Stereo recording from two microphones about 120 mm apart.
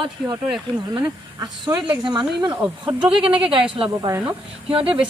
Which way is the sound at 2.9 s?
10° right (ahead or behind).